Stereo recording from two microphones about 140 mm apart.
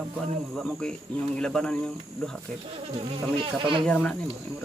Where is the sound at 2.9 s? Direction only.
40° right (ahead or behind).